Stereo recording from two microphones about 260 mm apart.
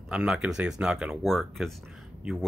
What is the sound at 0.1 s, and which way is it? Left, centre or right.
Speech, centre.